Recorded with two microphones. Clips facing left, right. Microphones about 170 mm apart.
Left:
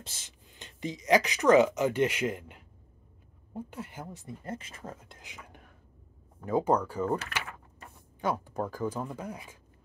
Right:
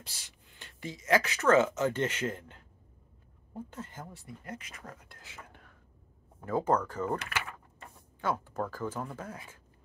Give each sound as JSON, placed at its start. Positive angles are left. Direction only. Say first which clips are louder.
{"t": 0.0, "sound": "speech", "louder": "left 3 dB", "side_deg": 20}
{"t": 8.2, "sound": "speech", "louder": "left 2 dB", "side_deg": 15}